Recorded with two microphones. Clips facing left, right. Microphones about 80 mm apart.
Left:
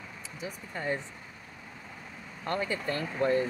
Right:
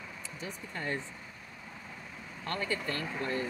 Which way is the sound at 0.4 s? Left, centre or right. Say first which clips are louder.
Left 3 dB; centre.